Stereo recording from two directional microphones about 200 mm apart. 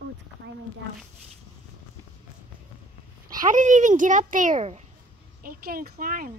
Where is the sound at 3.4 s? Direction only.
40° right (ahead or behind).